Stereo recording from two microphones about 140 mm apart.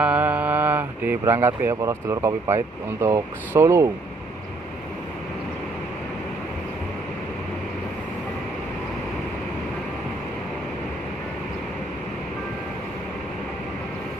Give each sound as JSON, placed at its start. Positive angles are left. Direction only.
{"t": 0.0, "sound": "speech", "side_deg": -10}